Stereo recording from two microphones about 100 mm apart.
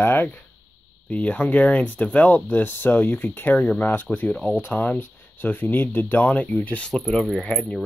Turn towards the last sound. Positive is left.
turn(degrees=10)  # may be behind; listen again after turning